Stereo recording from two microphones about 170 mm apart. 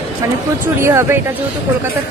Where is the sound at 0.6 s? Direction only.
15° right (ahead or behind).